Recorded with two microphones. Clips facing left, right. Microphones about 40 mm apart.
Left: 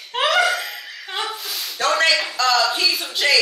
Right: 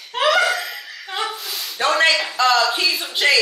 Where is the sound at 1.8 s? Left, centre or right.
Centre.